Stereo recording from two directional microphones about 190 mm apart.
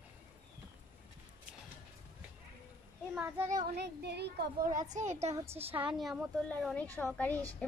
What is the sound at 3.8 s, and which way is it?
Speech, 60° right (ahead or behind).